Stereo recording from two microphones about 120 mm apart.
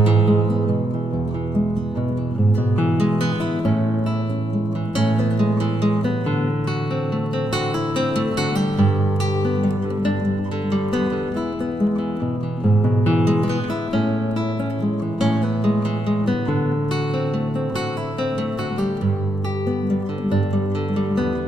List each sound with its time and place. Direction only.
0.0 s music: 40° left (ahead or behind)
15.1 s music: centre (ahead or behind)